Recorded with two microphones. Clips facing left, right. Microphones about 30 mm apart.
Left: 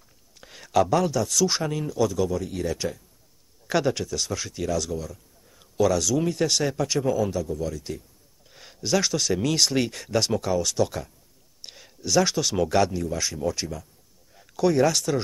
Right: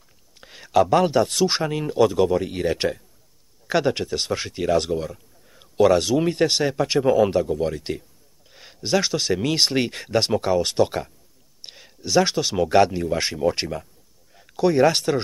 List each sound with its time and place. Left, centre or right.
0.4 s a sound: centre
0.9 s speech: right
1.5 s speech: right
1.9 s speech: right
3.6 s a man's voice: centre
3.9 s speech: right
6.5 s speech: right
7.2 s speech: right
8.5 s speech: centre; by 11.1 s right
11.6 s speech: centre; by 13.8 s right
14.3 s a sound: centre
14.8 s speech: right